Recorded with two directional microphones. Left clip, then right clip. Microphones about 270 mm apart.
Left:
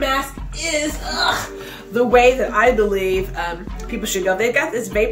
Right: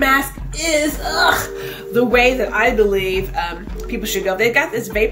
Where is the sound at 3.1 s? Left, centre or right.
Centre.